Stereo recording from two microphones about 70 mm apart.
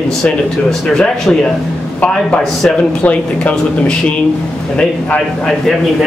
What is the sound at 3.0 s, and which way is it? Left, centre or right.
Speech, centre.